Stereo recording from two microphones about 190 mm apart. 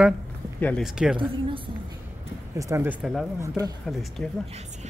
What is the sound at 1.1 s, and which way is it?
Speech, 25° right (ahead or behind).